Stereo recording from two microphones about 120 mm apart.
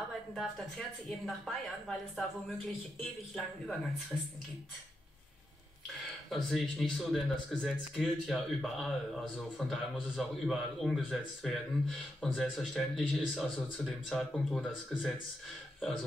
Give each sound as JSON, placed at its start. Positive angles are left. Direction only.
{"t": 0.3, "sound": "speech", "side_deg": 5}
{"t": 4.1, "sound": "speech", "side_deg": 20}
{"t": 6.3, "sound": "speech", "side_deg": 0}